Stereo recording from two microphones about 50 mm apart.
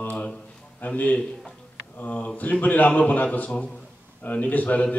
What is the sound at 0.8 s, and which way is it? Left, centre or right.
A man's voice, left.